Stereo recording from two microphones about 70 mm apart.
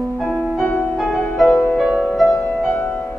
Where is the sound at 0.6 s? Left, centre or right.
Centre.